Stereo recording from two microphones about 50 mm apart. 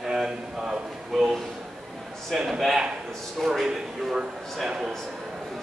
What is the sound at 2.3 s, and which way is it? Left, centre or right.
A man's voice, centre.